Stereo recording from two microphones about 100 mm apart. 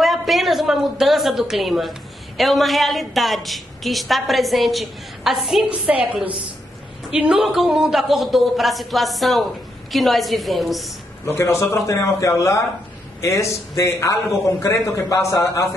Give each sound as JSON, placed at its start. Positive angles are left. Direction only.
{"t": 0.0, "sound": "a woman's voice", "side_deg": 0}
{"t": 5.7, "sound": "a woman's voice", "side_deg": -10}
{"t": 11.2, "sound": "a man's voice", "side_deg": 25}